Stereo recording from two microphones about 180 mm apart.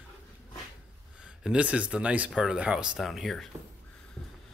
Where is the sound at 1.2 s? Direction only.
5° right (ahead or behind).